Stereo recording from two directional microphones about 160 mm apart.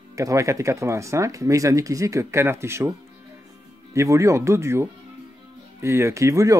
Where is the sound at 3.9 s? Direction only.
20° right (ahead or behind).